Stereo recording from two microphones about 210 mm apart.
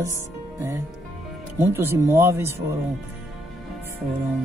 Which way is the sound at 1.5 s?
10° right (ahead or behind).